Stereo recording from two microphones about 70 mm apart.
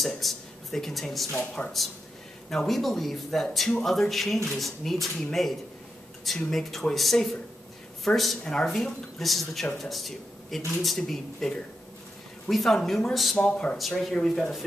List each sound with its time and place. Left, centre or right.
0.0 s a man's voice: centre
1.4 s speech: centre
2.5 s a man's voice: centre
13.4 s speech: centre
13.7 s speech: centre